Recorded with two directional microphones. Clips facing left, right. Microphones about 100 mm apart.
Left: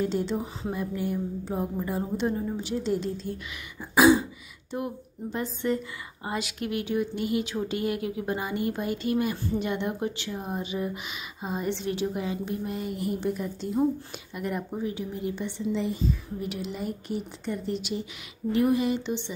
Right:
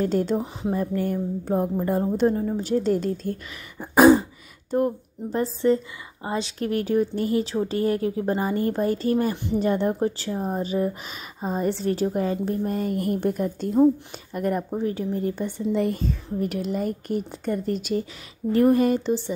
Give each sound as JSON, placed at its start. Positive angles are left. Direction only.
{"t": 0.0, "sound": "a woman's voice", "side_deg": -45}
{"t": 0.4, "sound": "speech", "side_deg": -20}
{"t": 0.7, "sound": "a woman's voice", "side_deg": -45}
{"t": 3.9, "sound": "throat clearing", "side_deg": -45}
{"t": 6.2, "sound": "a woman's voice", "side_deg": -30}